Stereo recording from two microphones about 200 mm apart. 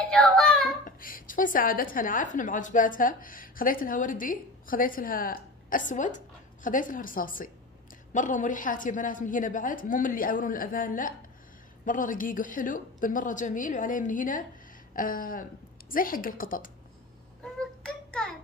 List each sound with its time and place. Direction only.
0.1 s child singing: 5° left (ahead or behind)
0.8 s a woman's voice: 45° left (ahead or behind)
17.4 s a sound: 5° left (ahead or behind)